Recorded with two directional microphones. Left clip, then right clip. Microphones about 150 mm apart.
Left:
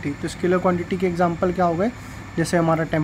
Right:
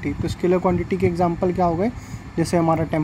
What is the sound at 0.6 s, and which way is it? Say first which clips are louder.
Speech: right 1 dB; 5° right (ahead or behind).